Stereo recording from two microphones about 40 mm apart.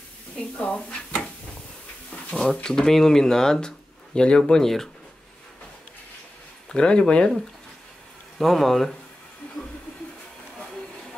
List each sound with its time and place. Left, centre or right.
0.4 s speech: left
2.3 s speech: centre
6.7 s speech: left
8.4 s speech: centre